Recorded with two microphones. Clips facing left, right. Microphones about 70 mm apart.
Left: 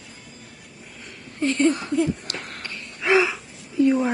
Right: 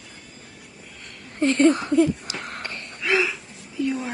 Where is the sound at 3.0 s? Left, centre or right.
Left.